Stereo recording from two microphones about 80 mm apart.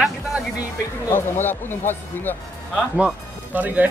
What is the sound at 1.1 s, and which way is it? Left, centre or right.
Speech, left.